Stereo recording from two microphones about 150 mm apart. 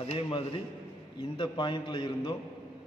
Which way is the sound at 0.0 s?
40° left (ahead or behind).